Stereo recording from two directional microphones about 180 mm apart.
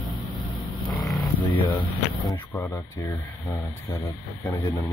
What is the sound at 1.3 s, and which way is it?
Speech, 25° left (ahead or behind).